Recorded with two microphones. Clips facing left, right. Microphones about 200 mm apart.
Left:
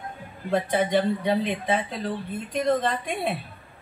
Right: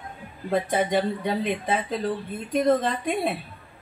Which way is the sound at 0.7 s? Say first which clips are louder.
Left 2 dB; 50° right (ahead or behind).